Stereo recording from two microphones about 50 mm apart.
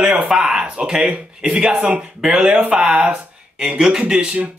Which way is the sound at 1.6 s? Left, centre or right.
Centre.